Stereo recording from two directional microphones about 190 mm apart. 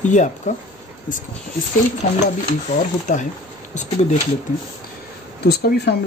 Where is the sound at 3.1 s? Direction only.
40° left (ahead or behind).